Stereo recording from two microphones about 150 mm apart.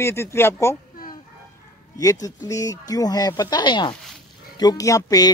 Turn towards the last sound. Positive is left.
turn(degrees=25)  # may be behind; listen again after turning